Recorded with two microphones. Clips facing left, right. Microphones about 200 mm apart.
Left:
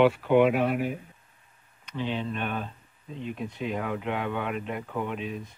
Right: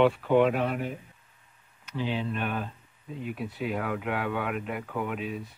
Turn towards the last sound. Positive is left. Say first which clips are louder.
# even
turn(degrees=-5)  # may be behind; listen again after turning